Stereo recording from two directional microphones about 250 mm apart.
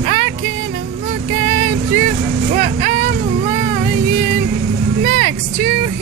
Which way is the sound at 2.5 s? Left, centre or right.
Right.